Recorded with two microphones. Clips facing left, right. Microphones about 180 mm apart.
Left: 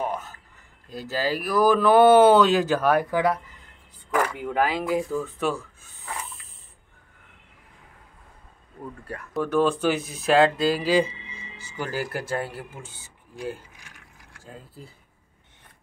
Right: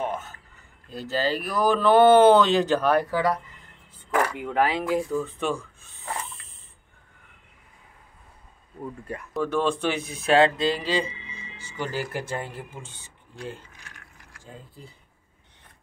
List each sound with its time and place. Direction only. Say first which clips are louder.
1.1 s speech: left 2 dB; 5° left (ahead or behind)
4.1 s speech: even; centre (ahead or behind)
9.3 s speech: left 3 dB; 5° left (ahead or behind)
13.4 s a sound: left 4 dB; 10° left (ahead or behind)